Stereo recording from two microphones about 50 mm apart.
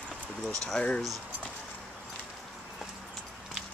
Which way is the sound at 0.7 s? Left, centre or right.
Centre.